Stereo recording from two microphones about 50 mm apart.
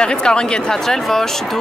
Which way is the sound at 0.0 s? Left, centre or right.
Centre.